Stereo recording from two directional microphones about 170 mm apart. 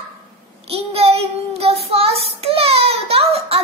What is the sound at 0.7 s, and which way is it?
Child singing, 35° right (ahead or behind).